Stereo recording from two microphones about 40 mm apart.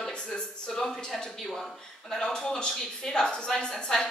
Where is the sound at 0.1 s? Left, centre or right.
Centre.